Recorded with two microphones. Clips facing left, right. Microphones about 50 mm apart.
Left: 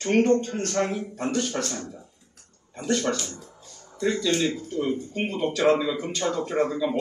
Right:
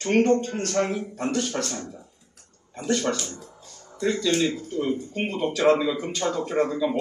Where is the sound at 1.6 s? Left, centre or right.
Right.